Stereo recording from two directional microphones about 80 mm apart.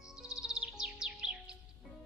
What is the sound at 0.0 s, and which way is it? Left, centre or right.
Music, centre.